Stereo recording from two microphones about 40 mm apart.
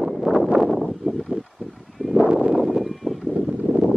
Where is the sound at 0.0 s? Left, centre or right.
Centre.